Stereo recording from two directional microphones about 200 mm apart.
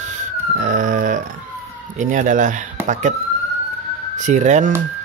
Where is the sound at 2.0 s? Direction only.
40° right (ahead or behind).